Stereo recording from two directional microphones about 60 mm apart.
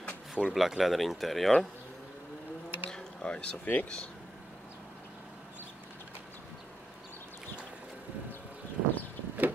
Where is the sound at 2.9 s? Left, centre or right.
Centre.